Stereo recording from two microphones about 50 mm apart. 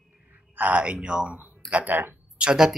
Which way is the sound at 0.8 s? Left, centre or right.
Centre.